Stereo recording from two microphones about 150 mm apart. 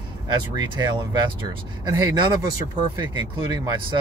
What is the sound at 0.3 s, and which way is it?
Speech, 30° right (ahead or behind).